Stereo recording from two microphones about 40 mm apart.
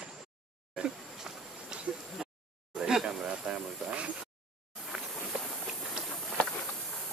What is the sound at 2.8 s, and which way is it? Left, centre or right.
Snake, centre.